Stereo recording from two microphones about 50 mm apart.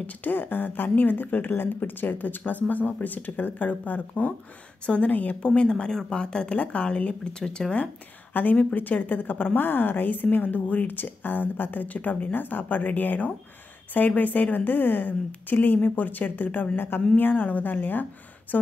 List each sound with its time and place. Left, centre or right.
0.0 s a woman's voice: left
5.4 s speech: centre
7.3 s speech: centre
8.3 s a woman's voice: left
16.7 s a woman's voice: left
18.5 s speech: left